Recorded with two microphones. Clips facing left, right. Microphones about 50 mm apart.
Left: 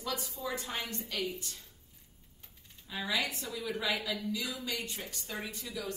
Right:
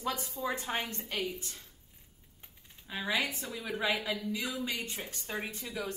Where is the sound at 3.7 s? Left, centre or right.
Right.